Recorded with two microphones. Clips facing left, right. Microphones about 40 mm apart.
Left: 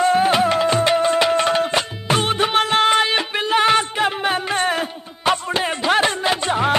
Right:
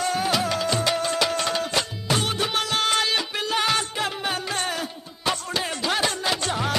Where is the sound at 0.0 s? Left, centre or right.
Left.